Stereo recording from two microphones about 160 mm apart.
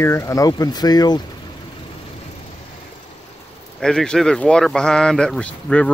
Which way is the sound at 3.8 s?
5° left (ahead or behind).